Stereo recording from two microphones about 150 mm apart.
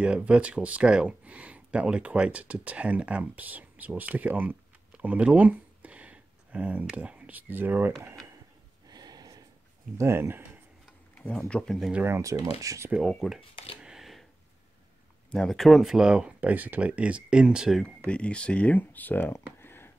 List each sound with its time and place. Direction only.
0.0 s speech: 10° right (ahead or behind)
8.8 s a sound: 25° right (ahead or behind)
9.9 s speech: 15° right (ahead or behind)
11.2 s speech: 5° left (ahead or behind)
11.9 s speech: 15° right (ahead or behind)
12.9 s speech: centre (ahead or behind)
13.7 s a sound: 5° right (ahead or behind)
15.3 s speech: centre (ahead or behind)
19.6 s a sound: 15° left (ahead or behind)